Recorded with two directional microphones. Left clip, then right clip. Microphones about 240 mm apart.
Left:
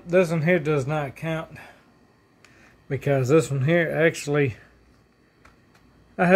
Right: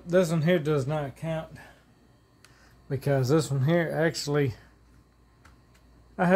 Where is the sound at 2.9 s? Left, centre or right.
Centre.